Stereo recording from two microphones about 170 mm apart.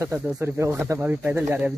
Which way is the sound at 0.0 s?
15° right (ahead or behind).